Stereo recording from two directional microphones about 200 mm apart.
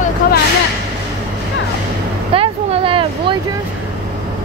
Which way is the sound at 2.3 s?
30° right (ahead or behind).